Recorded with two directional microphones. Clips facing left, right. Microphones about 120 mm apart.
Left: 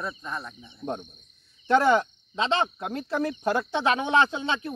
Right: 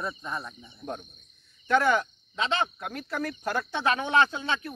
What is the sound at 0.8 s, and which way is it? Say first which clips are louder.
Speech: left 4 dB; 25° left (ahead or behind).